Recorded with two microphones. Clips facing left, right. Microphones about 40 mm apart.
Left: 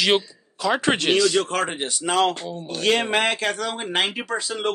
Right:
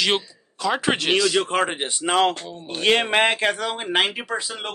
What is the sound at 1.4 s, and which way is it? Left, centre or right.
Speech, right.